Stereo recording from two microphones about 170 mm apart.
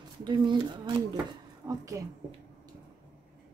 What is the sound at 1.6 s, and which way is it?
Speech, 10° right (ahead or behind).